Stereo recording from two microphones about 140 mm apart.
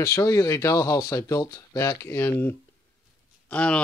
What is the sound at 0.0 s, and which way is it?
Speech, 25° left (ahead or behind).